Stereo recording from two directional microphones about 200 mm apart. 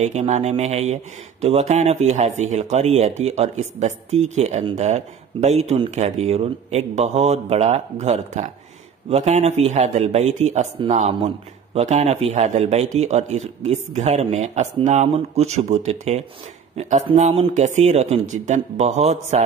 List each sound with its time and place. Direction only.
0.0 s speech: 35° right (ahead or behind)